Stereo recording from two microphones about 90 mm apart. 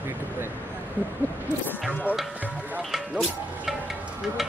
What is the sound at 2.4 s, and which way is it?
Speech, 20° right (ahead or behind).